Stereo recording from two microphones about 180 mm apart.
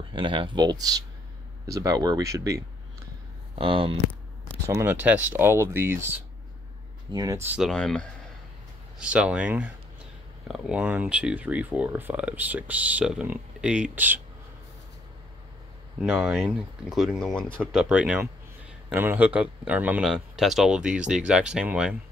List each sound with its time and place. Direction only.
0.1 s speech: 25° right (ahead or behind)
3.5 s speech: 30° right (ahead or behind)
4.6 s speech: 15° right (ahead or behind)
7.7 s speech: 5° left (ahead or behind)
8.9 s speech: 5° right (ahead or behind)
16.0 s speech: centre (ahead or behind)